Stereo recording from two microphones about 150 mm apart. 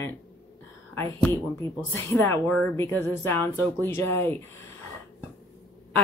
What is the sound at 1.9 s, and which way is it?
Speech, 15° left (ahead or behind).